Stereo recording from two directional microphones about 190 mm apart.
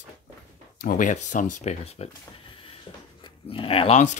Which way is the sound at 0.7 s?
45° left (ahead or behind).